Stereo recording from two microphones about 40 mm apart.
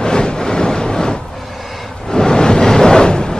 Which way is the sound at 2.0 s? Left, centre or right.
Centre.